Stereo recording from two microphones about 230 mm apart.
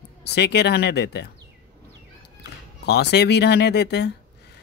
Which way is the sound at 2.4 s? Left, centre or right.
Left.